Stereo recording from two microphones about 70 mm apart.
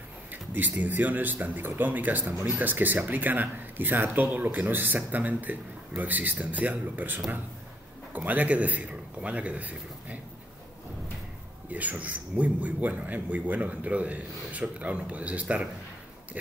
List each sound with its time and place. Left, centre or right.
0.3 s a man's voice: right
11.7 s speech: right